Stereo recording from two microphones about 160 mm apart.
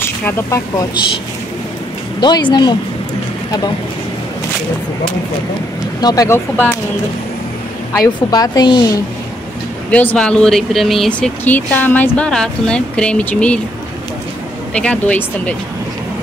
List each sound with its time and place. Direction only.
0.2 s speech: 20° left (ahead or behind)
2.1 s speech: 25° left (ahead or behind)
5.9 s speech: 25° left (ahead or behind)
7.9 s a woman's voice: 20° left (ahead or behind)
9.8 s speech: 10° left (ahead or behind)
14.7 s speech: 5° left (ahead or behind)